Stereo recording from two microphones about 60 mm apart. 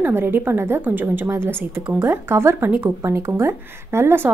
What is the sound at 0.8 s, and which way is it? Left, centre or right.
A woman's voice, right.